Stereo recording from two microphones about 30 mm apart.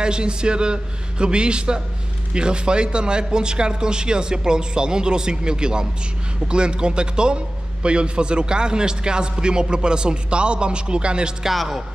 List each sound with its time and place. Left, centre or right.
0.0 s a man's voice: right
11.5 s speech: centre